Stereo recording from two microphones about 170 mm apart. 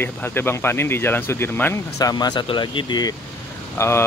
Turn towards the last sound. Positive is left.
turn(degrees=15)  # may be behind; listen again after turning